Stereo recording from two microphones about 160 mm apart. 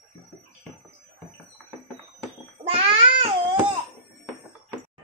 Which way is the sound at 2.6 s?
35° right (ahead or behind).